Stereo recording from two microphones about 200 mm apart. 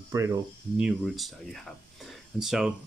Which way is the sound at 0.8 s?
Centre (ahead or behind).